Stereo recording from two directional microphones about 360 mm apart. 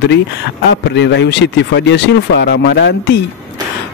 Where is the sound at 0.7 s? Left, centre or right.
Left.